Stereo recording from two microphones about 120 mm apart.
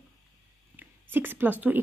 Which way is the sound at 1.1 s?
15° right (ahead or behind).